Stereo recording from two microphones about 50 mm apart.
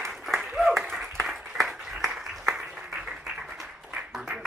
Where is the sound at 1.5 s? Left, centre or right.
Centre.